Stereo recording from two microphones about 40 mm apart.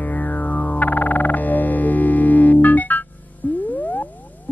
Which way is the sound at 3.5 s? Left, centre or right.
Left.